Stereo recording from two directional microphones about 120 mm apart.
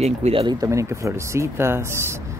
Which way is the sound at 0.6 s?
25° right (ahead or behind).